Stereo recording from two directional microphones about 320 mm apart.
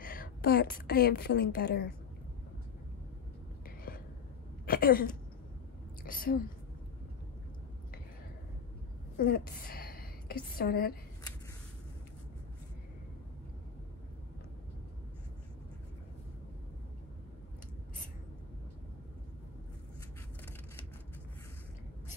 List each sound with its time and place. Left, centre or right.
0.0 s a woman's voice: left
3.6 s whispering: left
4.6 s a woman's voice: left
6.0 s a woman's voice: left
9.1 s a woman's voice: left